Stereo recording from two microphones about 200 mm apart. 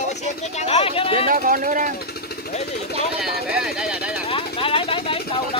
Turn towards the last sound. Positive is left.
turn(degrees=25)  # may be behind; listen again after turning